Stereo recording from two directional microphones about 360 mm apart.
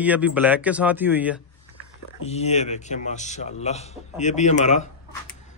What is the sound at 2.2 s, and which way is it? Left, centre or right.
A man's voice, centre.